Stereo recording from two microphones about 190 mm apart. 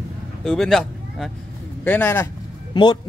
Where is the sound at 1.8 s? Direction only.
10° left (ahead or behind).